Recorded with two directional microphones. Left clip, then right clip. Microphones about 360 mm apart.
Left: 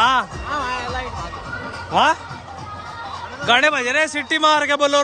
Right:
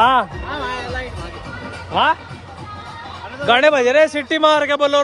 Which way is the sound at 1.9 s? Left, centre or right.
Centre.